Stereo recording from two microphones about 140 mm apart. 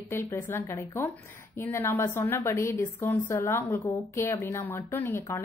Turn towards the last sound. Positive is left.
turn(degrees=15)  # may be behind; listen again after turning